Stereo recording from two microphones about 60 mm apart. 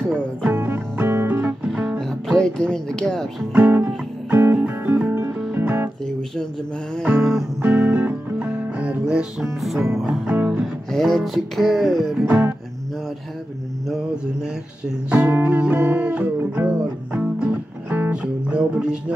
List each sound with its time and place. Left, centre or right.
0.1 s speech: right
0.6 s music: right
2.0 s speech: centre
3.5 s speech: right
4.3 s music: right
4.6 s music: right
7.6 s music: right
9.0 s speech: centre
10.0 s speech: centre
10.9 s music: centre
12.3 s music: right
15.0 s music: right